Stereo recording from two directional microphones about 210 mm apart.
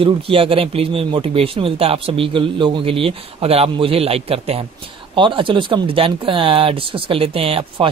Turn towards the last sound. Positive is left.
turn(degrees=-25)  # may be behind; listen again after turning